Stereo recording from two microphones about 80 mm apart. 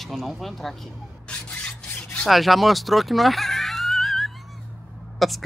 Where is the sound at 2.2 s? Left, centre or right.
Centre.